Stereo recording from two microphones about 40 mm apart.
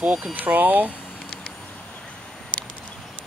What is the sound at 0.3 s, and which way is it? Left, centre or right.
Speech, right.